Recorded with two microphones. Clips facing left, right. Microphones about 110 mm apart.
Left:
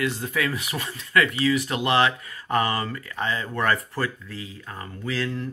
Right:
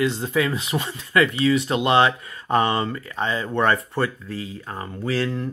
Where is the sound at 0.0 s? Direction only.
25° right (ahead or behind).